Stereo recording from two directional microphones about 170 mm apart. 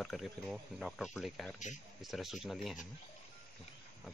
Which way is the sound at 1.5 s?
45° left (ahead or behind).